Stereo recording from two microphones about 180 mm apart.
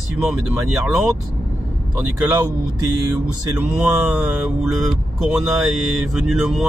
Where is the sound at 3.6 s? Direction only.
10° right (ahead or behind).